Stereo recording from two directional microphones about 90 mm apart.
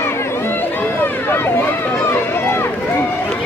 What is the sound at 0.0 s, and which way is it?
Run, 30° left (ahead or behind).